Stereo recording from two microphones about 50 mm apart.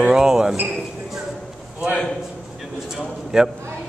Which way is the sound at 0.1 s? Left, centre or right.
Centre.